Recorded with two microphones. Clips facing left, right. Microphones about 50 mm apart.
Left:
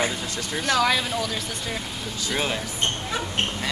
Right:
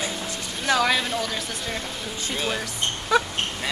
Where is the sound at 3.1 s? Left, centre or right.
Right.